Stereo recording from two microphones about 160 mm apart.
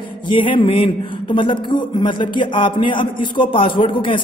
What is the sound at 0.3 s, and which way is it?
A man's voice, 30° left (ahead or behind).